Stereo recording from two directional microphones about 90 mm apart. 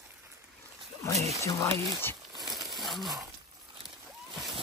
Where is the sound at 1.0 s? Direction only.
35° left (ahead or behind).